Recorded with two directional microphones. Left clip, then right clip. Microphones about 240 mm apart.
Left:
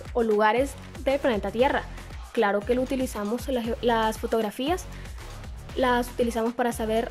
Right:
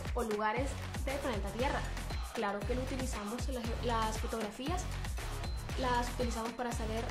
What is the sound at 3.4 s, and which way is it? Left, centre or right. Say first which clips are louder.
Speech: left 14 dB; left.